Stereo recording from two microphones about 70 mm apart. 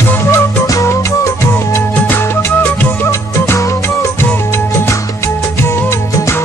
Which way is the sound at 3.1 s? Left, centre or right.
Left.